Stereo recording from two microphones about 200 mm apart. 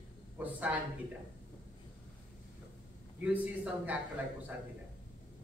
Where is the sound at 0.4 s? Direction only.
5° right (ahead or behind).